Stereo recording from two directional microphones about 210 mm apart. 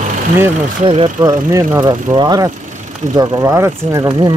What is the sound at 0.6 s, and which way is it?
Speech, 30° right (ahead or behind).